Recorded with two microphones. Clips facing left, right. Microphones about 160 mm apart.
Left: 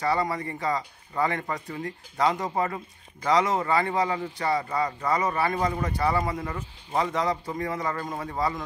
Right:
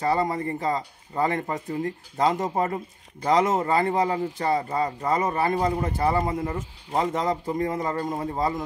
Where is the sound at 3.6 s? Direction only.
35° right (ahead or behind).